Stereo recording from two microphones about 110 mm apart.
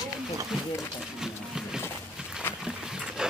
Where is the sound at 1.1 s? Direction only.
5° right (ahead or behind).